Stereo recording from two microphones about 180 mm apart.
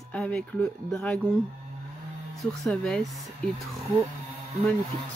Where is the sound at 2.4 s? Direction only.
5° left (ahead or behind).